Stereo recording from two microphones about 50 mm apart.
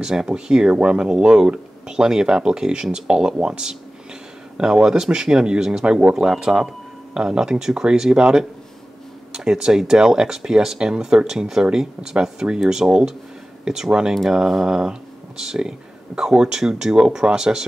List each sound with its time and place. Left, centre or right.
0.0 s speech: centre
6.1 s speech: centre